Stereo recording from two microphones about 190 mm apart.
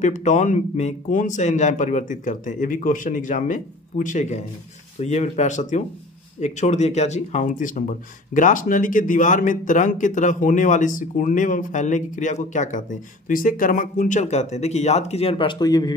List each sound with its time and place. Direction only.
0.0 s speech: 40° left (ahead or behind); by 15.9 s 20° left (ahead or behind)